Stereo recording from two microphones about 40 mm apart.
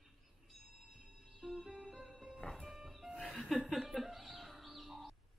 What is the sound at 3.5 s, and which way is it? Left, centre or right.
Chuckle, centre.